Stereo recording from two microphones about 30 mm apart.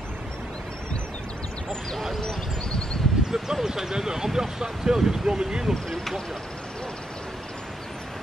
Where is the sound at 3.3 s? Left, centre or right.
Centre.